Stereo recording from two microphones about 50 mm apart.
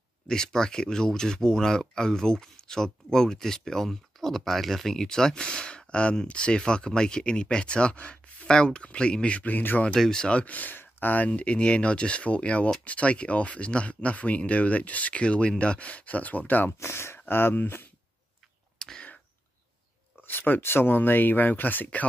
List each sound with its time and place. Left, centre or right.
0.3 s speech: centre; by 9.8 s left
9.9 s speech: centre
10.4 s speech: left
10.8 s a sound: left
11.2 s speech: left
16.8 s speech: left
18.8 s a sound: centre
20.2 s speech: left